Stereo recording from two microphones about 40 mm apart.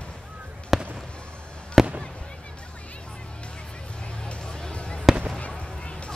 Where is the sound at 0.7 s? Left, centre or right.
Centre.